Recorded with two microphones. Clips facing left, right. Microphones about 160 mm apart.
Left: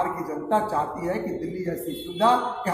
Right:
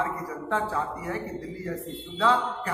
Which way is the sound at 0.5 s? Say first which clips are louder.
Left 4 dB; 35° left (ahead or behind).